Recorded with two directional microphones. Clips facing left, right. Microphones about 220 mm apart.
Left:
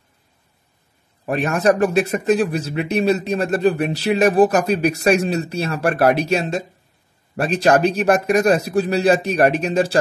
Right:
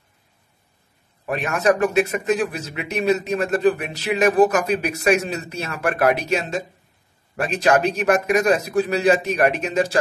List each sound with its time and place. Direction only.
1.2 s speech: 35° left (ahead or behind)